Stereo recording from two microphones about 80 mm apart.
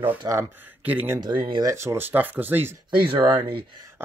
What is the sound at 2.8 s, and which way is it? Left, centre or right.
Speech, right.